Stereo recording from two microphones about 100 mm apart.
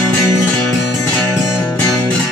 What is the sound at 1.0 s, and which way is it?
Music, 15° left (ahead or behind).